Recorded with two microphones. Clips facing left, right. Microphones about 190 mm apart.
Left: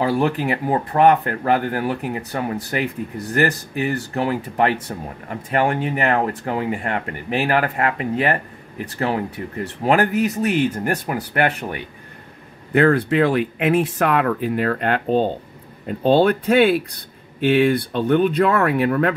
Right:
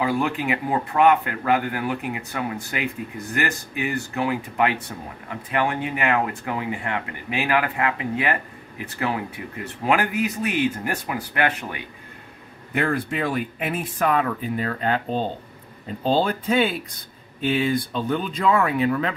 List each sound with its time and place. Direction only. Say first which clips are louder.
0.0 s speech: left 4 dB; 40° left (ahead or behind)
12.7 s speech: left 8 dB; 60° left (ahead or behind)
16.0 s speech: left 6 dB; 65° left (ahead or behind)